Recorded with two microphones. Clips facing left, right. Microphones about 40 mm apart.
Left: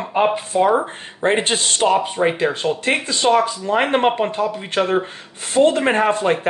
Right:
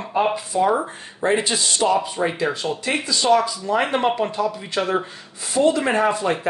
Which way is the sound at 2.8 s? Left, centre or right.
Left.